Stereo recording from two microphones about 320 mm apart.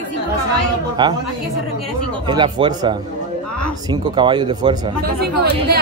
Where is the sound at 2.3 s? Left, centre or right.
Centre.